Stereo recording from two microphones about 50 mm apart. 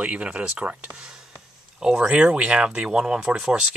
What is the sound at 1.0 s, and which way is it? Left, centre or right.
Speech, centre.